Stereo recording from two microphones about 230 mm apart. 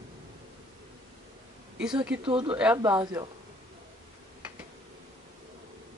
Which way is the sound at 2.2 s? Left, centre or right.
Right.